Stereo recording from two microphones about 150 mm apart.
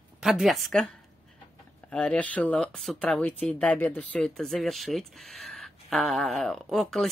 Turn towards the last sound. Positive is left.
turn(degrees=0)  # may be behind; listen again after turning